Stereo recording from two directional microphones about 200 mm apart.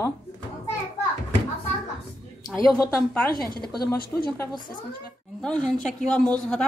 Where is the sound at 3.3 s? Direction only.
50° left (ahead or behind).